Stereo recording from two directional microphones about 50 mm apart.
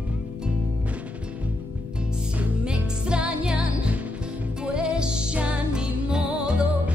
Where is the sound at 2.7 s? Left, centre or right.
Centre.